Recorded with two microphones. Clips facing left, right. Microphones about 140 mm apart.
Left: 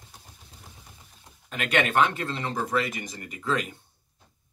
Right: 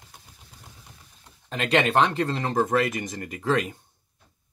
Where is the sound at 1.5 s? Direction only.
30° right (ahead or behind); by 3.1 s 45° right (ahead or behind).